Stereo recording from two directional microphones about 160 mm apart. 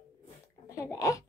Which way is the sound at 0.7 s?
20° left (ahead or behind).